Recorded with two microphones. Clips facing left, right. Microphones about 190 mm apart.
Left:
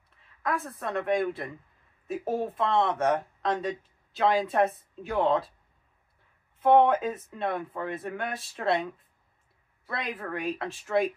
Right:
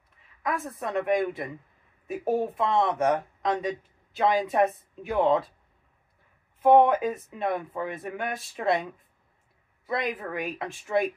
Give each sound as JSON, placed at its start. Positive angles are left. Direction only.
{"t": 0.4, "sound": "speech", "side_deg": -15}
{"t": 6.6, "sound": "speech", "side_deg": -15}
{"t": 9.8, "sound": "speech", "side_deg": -15}